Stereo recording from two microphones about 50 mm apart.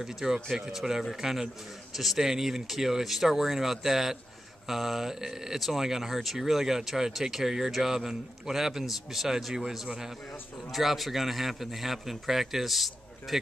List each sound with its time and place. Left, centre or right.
0.0 s a man's voice: centre